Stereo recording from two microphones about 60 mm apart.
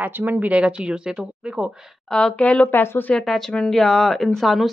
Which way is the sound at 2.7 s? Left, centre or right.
Left.